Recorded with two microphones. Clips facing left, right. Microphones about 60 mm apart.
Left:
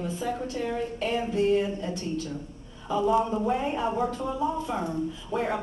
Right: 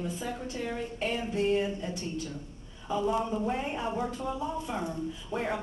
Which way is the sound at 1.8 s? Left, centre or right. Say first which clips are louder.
Left 3 dB; right.